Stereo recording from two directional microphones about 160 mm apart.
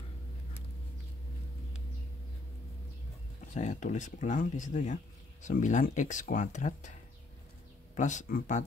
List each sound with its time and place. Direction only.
3.5 s speech: 50° left (ahead or behind)